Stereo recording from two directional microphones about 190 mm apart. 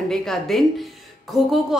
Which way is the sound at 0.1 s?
Centre (ahead or behind).